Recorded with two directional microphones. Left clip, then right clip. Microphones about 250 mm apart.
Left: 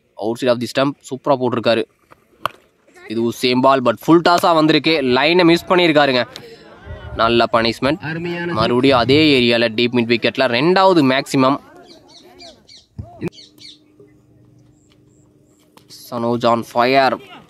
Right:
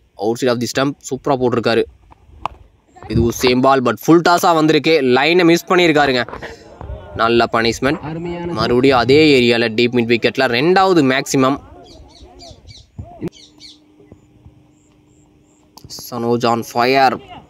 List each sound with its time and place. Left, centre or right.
0.1 s speech: centre
3.1 s speech: centre
6.7 s a sound: left
7.2 s speech: centre
8.0 s speech: left
8.5 s speech: centre
11.6 s bird: left
15.9 s speech: centre